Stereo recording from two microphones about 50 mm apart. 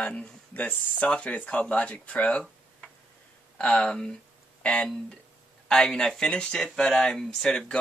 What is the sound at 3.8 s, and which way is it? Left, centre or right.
Speech, centre.